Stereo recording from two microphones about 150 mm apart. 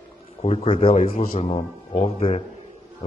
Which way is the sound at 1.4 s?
40° left (ahead or behind).